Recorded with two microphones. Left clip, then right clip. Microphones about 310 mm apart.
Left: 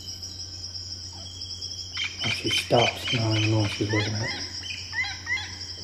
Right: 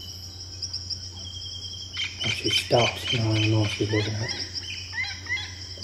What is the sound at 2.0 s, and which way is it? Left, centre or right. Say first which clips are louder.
Frog: even; right.